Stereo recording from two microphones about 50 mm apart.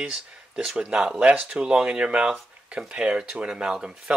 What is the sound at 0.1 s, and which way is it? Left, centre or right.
Speech, centre.